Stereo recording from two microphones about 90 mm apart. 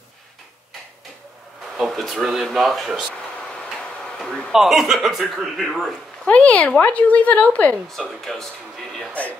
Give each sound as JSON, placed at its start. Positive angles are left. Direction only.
{"t": 1.8, "sound": "speech", "side_deg": 0}
{"t": 6.2, "sound": "a woman's voice", "side_deg": 15}
{"t": 8.2, "sound": "speech", "side_deg": 5}